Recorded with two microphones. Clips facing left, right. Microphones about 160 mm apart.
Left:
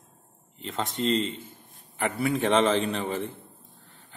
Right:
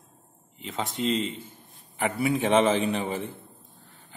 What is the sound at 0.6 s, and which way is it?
Speech, 5° right (ahead or behind).